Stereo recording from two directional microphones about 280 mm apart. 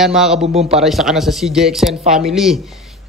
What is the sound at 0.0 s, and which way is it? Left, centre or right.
Speech, centre.